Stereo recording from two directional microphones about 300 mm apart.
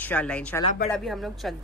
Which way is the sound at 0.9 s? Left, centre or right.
Centre.